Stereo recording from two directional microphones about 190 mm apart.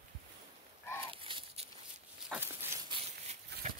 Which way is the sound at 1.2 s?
30° right (ahead or behind).